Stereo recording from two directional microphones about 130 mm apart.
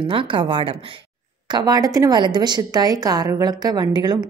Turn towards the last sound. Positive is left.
turn(degrees=-30)  # may be behind; listen again after turning